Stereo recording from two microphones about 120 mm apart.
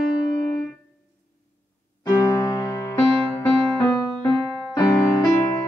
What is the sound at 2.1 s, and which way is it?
Music, 30° left (ahead or behind).